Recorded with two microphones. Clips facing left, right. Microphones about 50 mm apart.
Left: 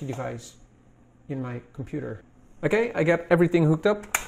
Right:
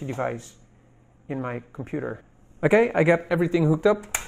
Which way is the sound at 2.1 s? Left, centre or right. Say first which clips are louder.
Right 5 dB; centre.